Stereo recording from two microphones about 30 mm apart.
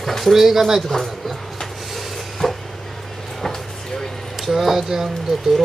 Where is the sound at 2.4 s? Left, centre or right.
Centre.